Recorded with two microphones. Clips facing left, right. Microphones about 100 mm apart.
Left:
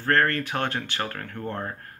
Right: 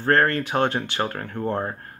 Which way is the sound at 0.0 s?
25° right (ahead or behind).